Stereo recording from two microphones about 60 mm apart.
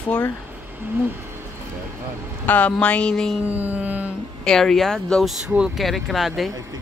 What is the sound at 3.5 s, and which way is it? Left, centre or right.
Mantra, right.